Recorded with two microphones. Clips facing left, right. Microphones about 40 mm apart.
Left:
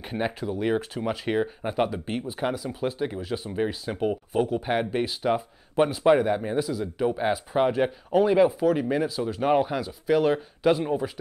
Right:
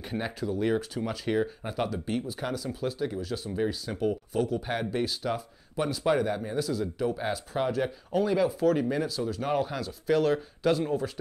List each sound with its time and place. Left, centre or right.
0.0 s speech: left
8.5 s speech: centre